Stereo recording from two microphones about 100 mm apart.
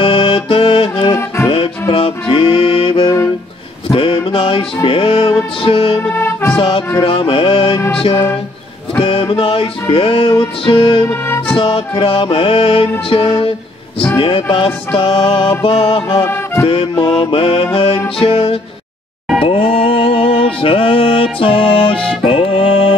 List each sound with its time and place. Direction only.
0.0 s music: 65° left (ahead or behind)
1.1 s music: 30° left (ahead or behind)
1.5 s music: 65° left (ahead or behind)
6.1 s music: 25° left (ahead or behind)
7.0 s music: 60° left (ahead or behind)
8.1 s a sound: 25° left (ahead or behind)
9.0 s music: 60° left (ahead or behind)
11.1 s music: 25° left (ahead or behind)
11.5 s music: 60° left (ahead or behind)
13.1 s speech: 65° left (ahead or behind)
14.1 s music: 60° left (ahead or behind)
19.4 s mantra: 65° left (ahead or behind)
22.2 s music: 65° left (ahead or behind)